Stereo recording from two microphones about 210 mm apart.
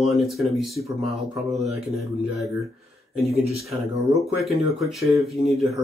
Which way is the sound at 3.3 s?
30° right (ahead or behind).